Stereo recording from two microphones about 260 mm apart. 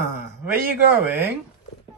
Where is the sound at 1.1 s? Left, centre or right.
Centre.